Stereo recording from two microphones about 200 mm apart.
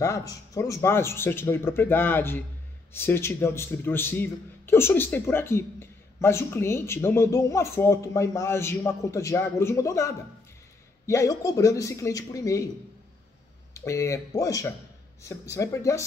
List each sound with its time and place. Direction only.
0.0 s speech: 15° left (ahead or behind)
13.7 s speech: 15° left (ahead or behind)